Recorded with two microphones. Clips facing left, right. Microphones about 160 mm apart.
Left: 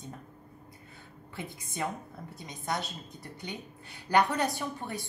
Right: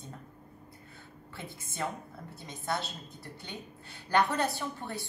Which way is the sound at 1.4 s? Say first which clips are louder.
Left 2 dB; 15° left (ahead or behind).